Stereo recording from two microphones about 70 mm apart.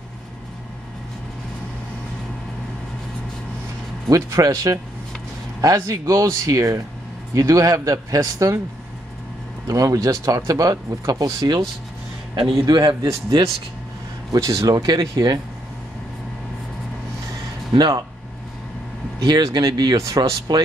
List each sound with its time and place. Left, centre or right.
4.1 s a man's voice: right
5.8 s a man's voice: right
9.7 s speech: right
11.3 s speech: right
12.6 s a man's voice: right
14.3 s speech: right
17.7 s speech: right
19.1 s speech: right
20.2 s speech: right